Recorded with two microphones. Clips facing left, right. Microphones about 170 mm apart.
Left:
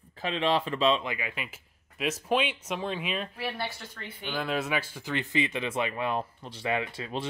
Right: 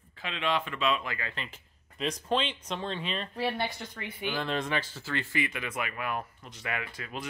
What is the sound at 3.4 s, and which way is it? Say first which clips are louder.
Speech: right 3 dB; 30° right (ahead or behind).